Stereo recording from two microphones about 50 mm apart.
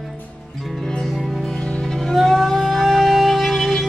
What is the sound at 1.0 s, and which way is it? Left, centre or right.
Music, centre.